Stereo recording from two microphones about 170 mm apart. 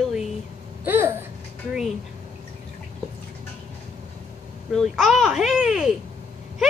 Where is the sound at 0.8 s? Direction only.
10° right (ahead or behind).